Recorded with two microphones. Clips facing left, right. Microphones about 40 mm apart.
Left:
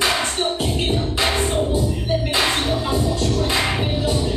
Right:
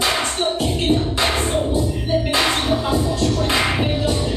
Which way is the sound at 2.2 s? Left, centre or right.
Centre.